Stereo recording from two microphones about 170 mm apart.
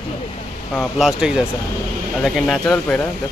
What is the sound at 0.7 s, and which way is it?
Speech, centre (ahead or behind).